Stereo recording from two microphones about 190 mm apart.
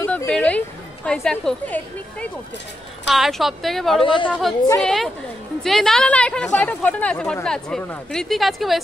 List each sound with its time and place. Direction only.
0.0 s a woman's voice: 10° left (ahead or behind)
4.0 s speech: 25° left (ahead or behind)
4.3 s speech: centre (ahead or behind)